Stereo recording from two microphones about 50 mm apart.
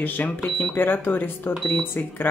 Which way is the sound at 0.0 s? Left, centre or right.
Left.